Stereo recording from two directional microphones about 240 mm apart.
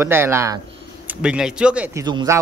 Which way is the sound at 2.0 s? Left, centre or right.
Centre.